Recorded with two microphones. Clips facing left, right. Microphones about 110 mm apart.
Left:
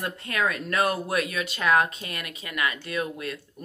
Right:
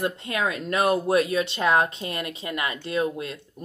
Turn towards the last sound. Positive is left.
turn(degrees=-25)  # may be behind; listen again after turning